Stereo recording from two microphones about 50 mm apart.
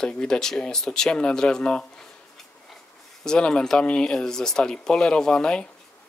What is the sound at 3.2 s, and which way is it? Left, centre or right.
Speech, centre.